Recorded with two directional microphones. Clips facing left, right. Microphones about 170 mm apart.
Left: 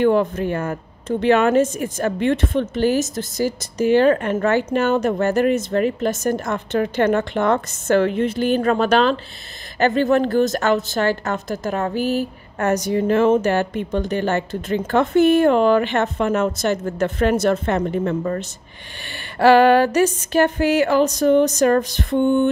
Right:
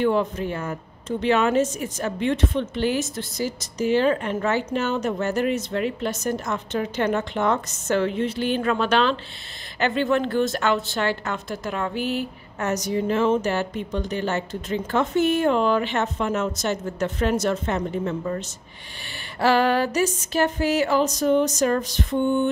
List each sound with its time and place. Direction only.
0.0 s speech: 55° left (ahead or behind)
2.6 s a woman's voice: 45° left (ahead or behind)
12.6 s speech: 55° left (ahead or behind)